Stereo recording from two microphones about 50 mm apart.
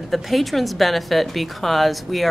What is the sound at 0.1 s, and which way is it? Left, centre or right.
Speech, centre.